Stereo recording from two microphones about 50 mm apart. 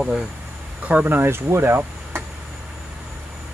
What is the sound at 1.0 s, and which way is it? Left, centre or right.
Speech, right.